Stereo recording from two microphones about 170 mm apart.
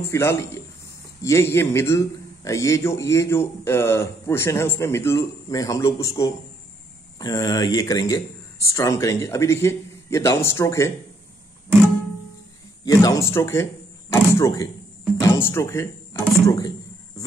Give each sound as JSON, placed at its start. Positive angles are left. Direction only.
{"t": 0.1, "sound": "a man's voice", "side_deg": 15}
{"t": 12.8, "sound": "a man's voice", "side_deg": 20}